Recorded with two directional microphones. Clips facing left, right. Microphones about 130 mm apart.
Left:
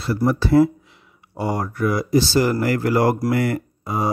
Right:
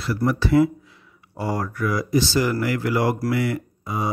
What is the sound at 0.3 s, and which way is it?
Speech, 35° left (ahead or behind).